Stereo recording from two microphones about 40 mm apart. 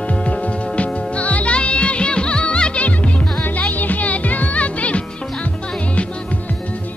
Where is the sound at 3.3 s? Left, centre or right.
Left.